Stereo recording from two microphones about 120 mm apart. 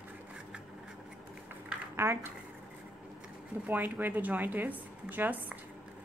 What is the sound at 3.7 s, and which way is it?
Speech, 15° right (ahead or behind).